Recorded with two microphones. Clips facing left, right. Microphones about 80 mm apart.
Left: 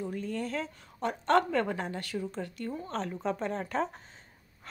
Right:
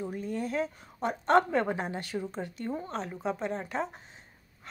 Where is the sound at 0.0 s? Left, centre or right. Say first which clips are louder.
Right 1 dB; centre.